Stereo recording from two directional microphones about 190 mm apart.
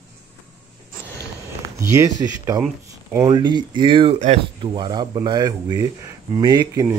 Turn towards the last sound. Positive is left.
turn(degrees=-20)  # may be behind; listen again after turning